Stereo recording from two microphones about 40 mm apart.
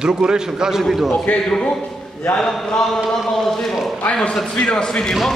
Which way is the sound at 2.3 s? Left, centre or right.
Centre.